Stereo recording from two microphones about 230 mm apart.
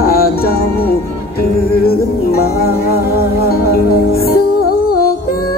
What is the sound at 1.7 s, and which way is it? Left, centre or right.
Music, left.